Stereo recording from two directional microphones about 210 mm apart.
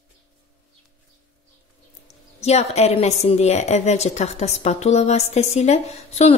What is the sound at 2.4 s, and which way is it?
A woman's voice, 30° left (ahead or behind).